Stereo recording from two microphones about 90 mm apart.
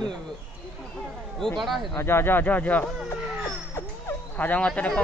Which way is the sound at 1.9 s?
25° left (ahead or behind).